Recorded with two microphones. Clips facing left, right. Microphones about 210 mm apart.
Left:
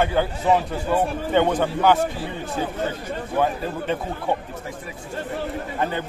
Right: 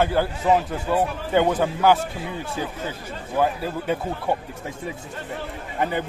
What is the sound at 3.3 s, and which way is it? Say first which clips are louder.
Speech: right 1 dB; 5° right (ahead or behind).